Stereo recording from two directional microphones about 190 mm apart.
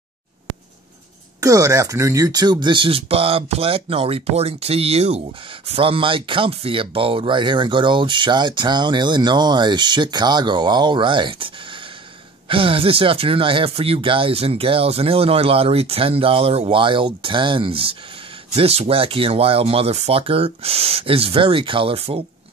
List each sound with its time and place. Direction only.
1.4 s speech: 15° right (ahead or behind)